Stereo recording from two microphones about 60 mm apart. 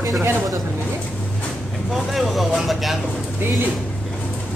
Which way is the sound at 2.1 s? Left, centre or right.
Centre.